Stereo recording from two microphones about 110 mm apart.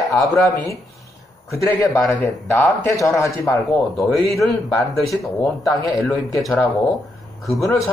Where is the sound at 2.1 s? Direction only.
15° left (ahead or behind).